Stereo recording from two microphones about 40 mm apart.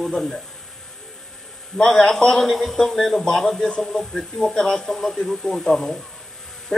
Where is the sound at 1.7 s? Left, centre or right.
Centre.